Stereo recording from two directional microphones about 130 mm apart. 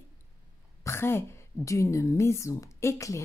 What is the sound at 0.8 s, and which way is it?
A woman's voice, 20° left (ahead or behind).